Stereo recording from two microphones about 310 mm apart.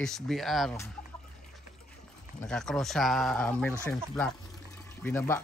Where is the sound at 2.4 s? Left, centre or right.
Centre.